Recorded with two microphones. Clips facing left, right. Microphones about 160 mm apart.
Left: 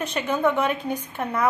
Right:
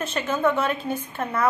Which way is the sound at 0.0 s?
15° left (ahead or behind).